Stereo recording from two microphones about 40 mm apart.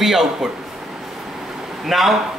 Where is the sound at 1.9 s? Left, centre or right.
Centre.